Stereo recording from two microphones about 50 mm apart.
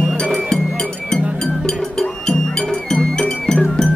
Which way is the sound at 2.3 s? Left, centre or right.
Centre.